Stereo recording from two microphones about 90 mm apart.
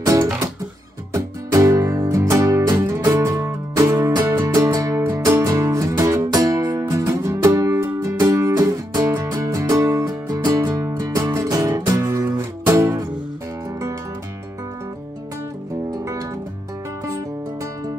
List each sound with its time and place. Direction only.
0.0 s guitar: 40° right (ahead or behind)
1.1 s music: 35° right (ahead or behind)
4.2 s music: 25° right (ahead or behind)
4.6 s music: 40° right (ahead or behind)
15.9 s music: 45° right (ahead or behind)